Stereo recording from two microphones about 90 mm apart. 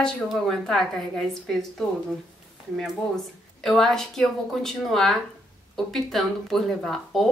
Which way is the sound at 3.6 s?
5° left (ahead or behind).